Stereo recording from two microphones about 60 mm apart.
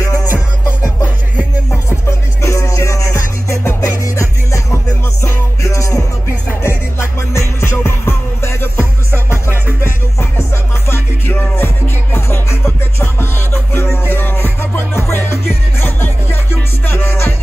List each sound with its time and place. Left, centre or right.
0.0 s music: left
1.7 s music: left
7.0 s music: left